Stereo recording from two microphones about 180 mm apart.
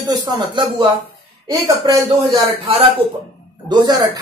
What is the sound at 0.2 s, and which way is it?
Speech, 25° right (ahead or behind).